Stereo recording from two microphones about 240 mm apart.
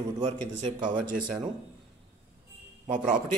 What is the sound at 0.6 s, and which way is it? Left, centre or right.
Speech, right.